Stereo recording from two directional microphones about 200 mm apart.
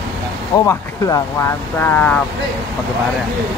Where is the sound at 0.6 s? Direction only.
15° left (ahead or behind).